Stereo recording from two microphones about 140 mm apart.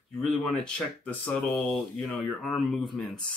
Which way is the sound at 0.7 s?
10° left (ahead or behind).